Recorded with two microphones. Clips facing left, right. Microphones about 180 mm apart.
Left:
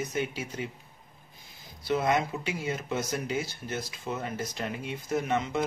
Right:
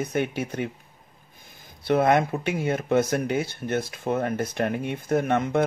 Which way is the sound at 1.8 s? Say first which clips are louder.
Right 6 dB; 60° right (ahead or behind).